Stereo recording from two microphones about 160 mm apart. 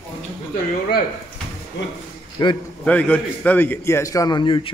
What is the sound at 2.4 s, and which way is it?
Speech, 25° left (ahead or behind).